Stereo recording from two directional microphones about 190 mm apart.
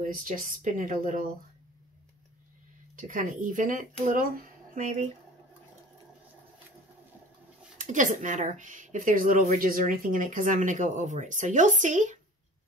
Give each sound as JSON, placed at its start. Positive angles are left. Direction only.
{"t": 0.0, "sound": "speech", "side_deg": -45}
{"t": 3.0, "sound": "speech", "side_deg": -45}
{"t": 7.7, "sound": "speech", "side_deg": -40}